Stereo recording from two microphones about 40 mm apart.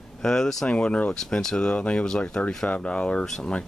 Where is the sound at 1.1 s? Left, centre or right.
Centre.